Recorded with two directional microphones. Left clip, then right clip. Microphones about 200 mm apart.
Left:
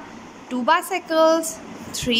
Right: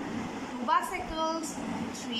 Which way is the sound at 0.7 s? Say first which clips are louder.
Left 9 dB; 55° left (ahead or behind).